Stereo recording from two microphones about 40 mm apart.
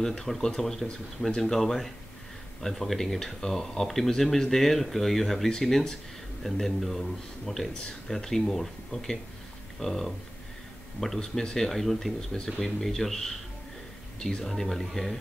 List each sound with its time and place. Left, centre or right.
0.0 s speech: centre
11.0 s speech: centre